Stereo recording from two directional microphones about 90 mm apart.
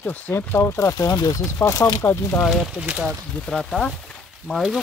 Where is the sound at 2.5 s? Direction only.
Centre (ahead or behind).